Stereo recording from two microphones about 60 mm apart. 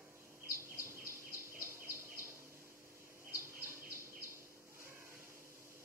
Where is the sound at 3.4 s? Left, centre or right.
Right.